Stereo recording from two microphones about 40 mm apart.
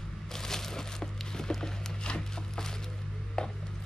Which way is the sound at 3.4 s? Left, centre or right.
Left.